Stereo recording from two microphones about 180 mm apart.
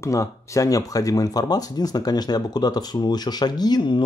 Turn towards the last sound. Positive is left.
turn(degrees=25)  # may be behind; listen again after turning